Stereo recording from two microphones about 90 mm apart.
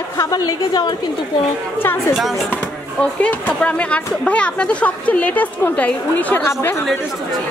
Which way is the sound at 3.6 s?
15° left (ahead or behind).